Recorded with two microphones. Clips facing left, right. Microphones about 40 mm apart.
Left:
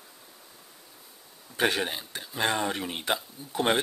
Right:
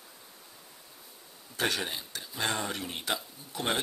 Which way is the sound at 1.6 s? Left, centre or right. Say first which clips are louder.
Left 5 dB; left.